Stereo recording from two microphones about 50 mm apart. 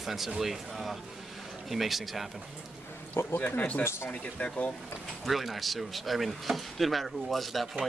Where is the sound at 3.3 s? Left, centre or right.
Left.